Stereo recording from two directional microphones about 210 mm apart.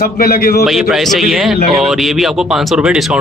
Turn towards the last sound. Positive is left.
turn(degrees=0)  # may be behind; listen again after turning